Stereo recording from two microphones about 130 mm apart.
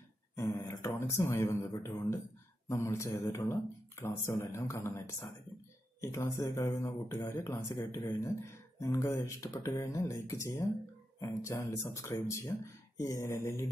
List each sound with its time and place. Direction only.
0.4 s speech: 20° left (ahead or behind)